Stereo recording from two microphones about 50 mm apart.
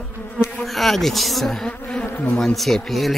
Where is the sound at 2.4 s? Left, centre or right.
Centre.